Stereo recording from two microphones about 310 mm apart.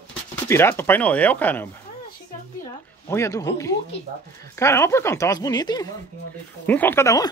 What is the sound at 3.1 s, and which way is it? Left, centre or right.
Speech, centre.